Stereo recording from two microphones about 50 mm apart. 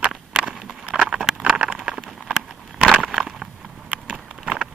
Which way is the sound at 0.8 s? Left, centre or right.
Right.